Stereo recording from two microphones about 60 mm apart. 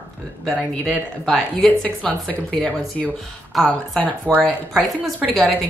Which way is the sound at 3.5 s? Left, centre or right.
Centre.